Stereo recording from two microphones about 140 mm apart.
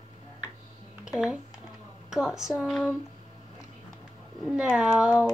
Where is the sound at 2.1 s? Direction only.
5° right (ahead or behind).